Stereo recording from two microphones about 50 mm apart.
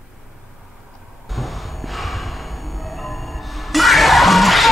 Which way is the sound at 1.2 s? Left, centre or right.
Centre.